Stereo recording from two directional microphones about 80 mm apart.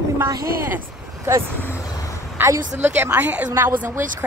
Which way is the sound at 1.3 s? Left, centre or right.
Right.